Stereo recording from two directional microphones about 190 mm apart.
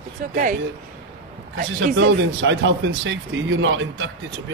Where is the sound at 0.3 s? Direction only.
50° right (ahead or behind).